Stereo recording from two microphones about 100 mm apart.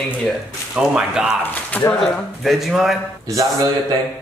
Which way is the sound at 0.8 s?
5° right (ahead or behind).